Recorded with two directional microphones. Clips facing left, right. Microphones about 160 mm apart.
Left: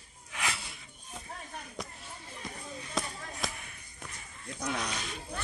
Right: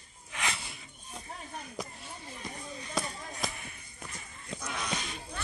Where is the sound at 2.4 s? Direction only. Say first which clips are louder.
Even; centre (ahead or behind).